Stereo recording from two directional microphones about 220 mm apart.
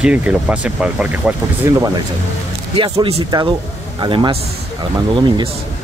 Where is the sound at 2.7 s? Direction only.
25° right (ahead or behind).